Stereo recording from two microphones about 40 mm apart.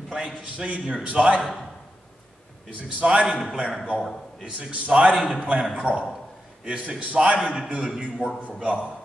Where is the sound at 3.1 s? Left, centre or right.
Right.